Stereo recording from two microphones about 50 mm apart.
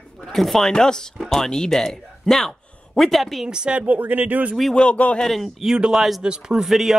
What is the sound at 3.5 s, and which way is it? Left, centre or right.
Speech, centre.